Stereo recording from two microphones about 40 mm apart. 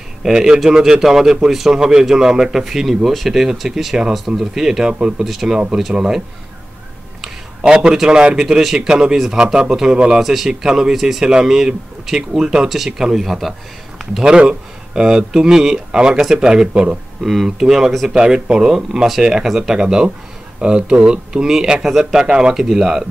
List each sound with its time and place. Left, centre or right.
0.2 s a man's voice: centre
7.6 s speech: centre
8.5 s a man's voice: centre
10.2 s a man's voice: centre
15.0 s a man's voice: centre
17.2 s a man's voice: centre
18.1 s a man's voice: right